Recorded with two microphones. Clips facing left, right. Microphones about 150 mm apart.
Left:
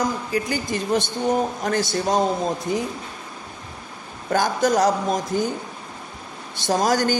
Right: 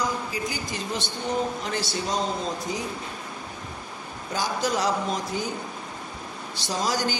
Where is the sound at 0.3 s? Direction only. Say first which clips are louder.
Left 7 dB; 55° left (ahead or behind).